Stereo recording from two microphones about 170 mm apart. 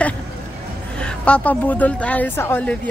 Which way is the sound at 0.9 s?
5° left (ahead or behind).